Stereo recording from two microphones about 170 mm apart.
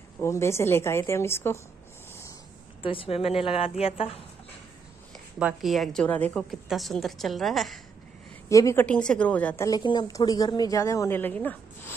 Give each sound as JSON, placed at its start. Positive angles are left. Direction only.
{"t": 0.2, "sound": "a woman's voice", "side_deg": 15}
{"t": 2.8, "sound": "a woman's voice", "side_deg": 30}
{"t": 5.1, "sound": "a woman's voice", "side_deg": 0}
{"t": 8.5, "sound": "a woman's voice", "side_deg": 20}
{"t": 8.8, "sound": "a woman's voice", "side_deg": 5}
{"t": 9.7, "sound": "a woman's voice", "side_deg": 25}